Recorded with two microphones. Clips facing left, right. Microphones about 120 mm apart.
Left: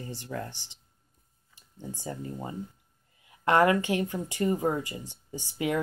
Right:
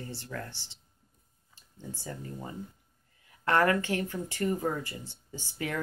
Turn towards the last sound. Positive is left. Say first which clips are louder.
# left 6 dB
turn(degrees=15)  # may be behind; listen again after turning